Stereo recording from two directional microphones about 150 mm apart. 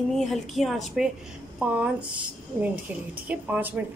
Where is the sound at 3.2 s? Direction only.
10° right (ahead or behind).